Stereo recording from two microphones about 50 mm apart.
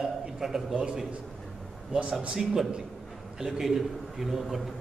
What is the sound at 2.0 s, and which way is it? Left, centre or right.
Speech, right.